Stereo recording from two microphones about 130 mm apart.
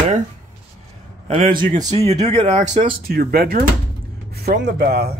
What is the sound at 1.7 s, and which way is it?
Speech, 30° right (ahead or behind).